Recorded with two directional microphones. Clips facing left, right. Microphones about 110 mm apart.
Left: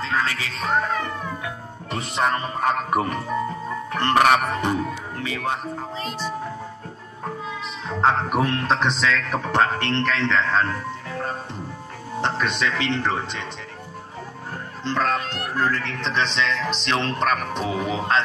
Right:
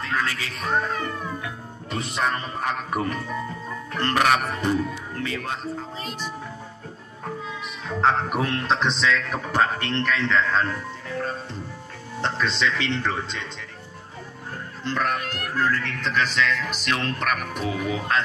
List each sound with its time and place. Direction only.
0.0 s speech: 25° left (ahead or behind)
1.9 s speech: 25° left (ahead or behind)
5.2 s music: 15° left (ahead or behind)
8.0 s music: 15° left (ahead or behind)
9.3 s a man's voice: 25° left (ahead or behind)
14.9 s speech: 25° left (ahead or behind)